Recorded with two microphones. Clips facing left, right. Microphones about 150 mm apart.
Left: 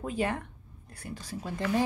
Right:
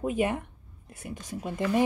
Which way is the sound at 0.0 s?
20° right (ahead or behind).